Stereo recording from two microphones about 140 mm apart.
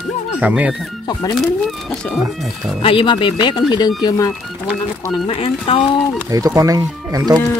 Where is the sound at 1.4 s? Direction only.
Centre (ahead or behind).